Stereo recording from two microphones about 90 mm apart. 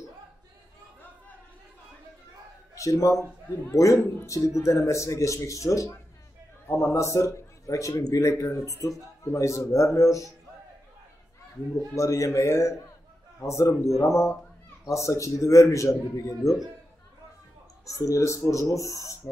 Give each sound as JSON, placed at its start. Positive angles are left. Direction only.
{"t": 2.7, "sound": "a man's voice", "side_deg": 35}
{"t": 11.9, "sound": "a man's voice", "side_deg": 35}
{"t": 17.8, "sound": "a man's voice", "side_deg": 35}